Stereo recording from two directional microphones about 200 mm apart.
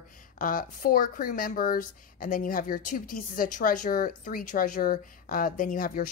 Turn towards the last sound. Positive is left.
turn(degrees=45)  # may be behind; listen again after turning